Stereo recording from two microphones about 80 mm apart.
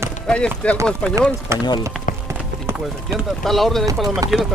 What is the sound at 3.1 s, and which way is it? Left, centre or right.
Speech, centre.